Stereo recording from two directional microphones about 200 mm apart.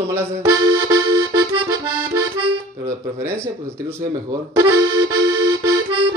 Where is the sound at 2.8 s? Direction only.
15° right (ahead or behind).